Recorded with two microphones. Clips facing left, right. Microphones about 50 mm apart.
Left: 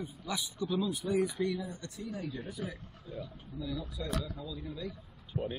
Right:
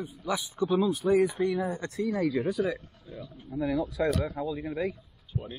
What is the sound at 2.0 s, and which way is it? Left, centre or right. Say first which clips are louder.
Speech: right 13 dB; right.